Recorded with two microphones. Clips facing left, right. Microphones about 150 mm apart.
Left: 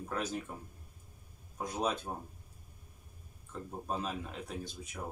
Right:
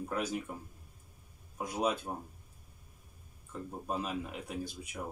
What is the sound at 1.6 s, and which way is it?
Speech, 10° right (ahead or behind).